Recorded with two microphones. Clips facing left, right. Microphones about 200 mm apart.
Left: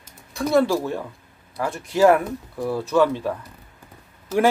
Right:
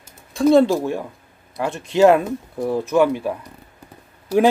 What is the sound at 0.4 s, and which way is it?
Speech, 25° right (ahead or behind).